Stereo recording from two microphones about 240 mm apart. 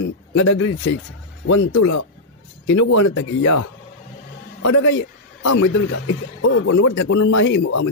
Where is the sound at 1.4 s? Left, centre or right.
Left.